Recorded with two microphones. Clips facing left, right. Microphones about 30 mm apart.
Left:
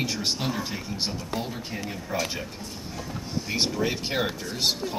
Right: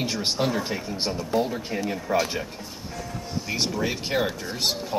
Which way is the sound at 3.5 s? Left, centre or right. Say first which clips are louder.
Even; centre.